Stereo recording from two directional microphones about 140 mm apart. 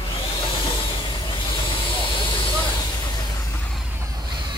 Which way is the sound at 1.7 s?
35° left (ahead or behind).